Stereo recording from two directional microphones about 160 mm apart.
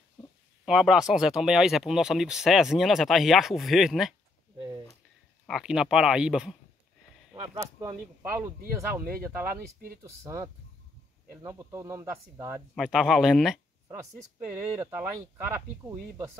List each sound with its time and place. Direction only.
0.7 s speech: 5° right (ahead or behind)
5.5 s speech: 5° right (ahead or behind)
8.2 s speech: 15° right (ahead or behind)
12.7 s speech: centre (ahead or behind)
14.8 s speech: 15° right (ahead or behind)